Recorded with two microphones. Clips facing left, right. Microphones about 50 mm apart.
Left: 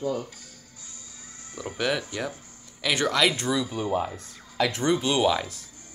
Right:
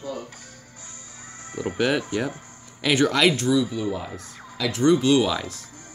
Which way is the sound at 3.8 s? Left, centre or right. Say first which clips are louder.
Right 2 dB; left.